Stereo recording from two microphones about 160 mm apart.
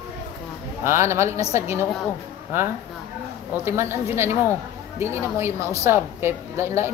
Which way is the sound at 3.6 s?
15° right (ahead or behind).